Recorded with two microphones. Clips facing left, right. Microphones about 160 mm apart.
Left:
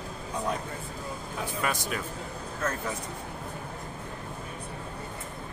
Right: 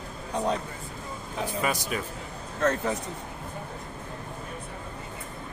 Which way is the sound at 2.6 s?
40° right (ahead or behind).